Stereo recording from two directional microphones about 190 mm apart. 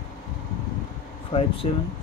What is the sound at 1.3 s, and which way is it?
Speech, 30° left (ahead or behind).